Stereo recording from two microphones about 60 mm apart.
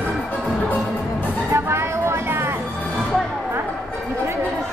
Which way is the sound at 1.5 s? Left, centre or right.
Right.